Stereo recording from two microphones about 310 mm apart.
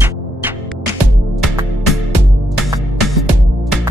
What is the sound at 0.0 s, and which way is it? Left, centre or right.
Music, centre.